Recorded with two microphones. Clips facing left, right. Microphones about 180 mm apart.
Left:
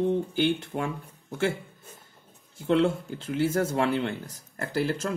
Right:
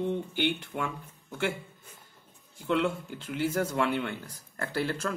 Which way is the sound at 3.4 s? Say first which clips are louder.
Left 3 dB; 30° left (ahead or behind).